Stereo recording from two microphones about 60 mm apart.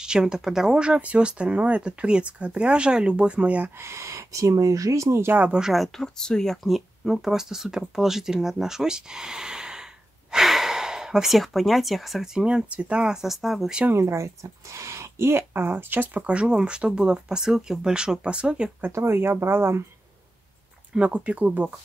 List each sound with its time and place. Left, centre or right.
0.0 s speech: centre
3.8 s speech: right
5.6 s speech: centre
6.1 s speech: centre
13.9 s speech: right; by 18.7 s centre
18.9 s speech: right
20.9 s speech: centre